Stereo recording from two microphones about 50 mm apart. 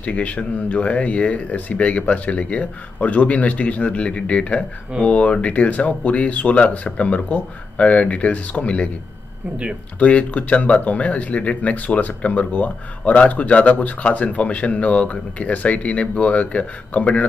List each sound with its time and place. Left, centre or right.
0.0 s speech: left
9.9 s speech: left